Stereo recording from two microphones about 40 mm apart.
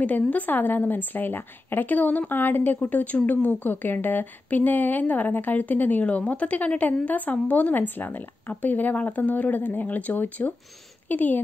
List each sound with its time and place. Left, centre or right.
0.0 s a woman's voice: left
2.8 s a woman's voice: left
6.0 s a woman's voice: left